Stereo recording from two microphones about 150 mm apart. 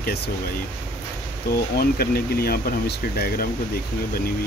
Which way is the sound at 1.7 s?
90° left.